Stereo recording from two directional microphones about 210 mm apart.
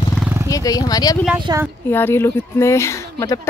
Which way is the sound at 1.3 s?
20° right (ahead or behind).